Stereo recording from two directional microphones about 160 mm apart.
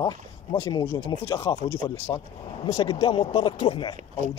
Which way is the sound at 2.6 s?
25° left (ahead or behind).